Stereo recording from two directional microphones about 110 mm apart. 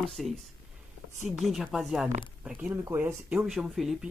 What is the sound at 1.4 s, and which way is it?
Speech, centre (ahead or behind).